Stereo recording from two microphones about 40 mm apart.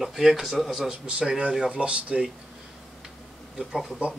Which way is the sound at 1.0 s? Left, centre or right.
Right.